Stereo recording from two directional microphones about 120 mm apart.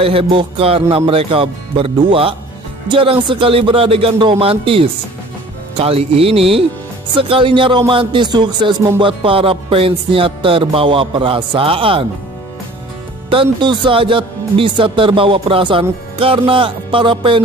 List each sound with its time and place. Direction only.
0.0 s speech: 50° right (ahead or behind)
13.3 s speech: 45° right (ahead or behind)